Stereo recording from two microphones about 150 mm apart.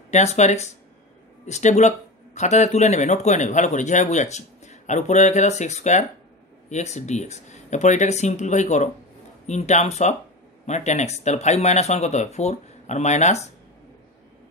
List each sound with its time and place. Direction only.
0.1 s speech: 50° left (ahead or behind)